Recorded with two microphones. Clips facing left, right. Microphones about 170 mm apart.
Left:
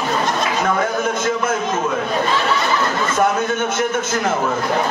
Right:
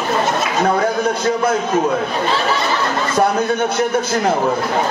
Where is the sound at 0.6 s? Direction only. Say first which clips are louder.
Right 4 dB; 35° right (ahead or behind).